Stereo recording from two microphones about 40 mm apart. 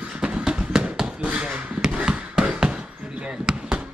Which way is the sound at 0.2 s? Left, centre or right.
Centre.